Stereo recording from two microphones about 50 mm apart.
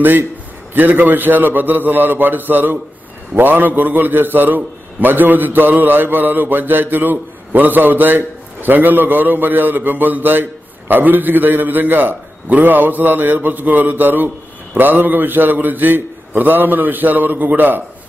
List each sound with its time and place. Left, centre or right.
0.7 s a man's voice: right